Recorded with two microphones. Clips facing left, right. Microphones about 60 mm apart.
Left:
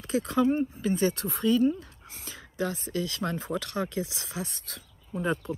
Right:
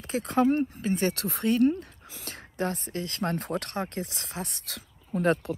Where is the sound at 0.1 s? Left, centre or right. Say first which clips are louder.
Right 1 dB; right.